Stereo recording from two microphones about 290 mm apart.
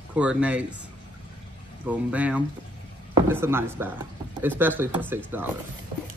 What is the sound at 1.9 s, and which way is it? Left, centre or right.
Speech, centre.